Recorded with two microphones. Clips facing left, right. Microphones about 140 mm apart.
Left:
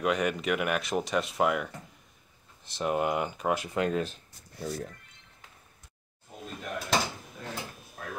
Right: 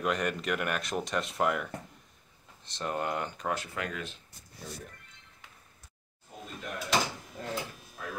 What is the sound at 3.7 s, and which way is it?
Speech, 30° left (ahead or behind).